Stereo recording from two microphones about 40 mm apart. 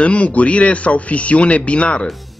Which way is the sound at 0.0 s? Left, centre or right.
Left.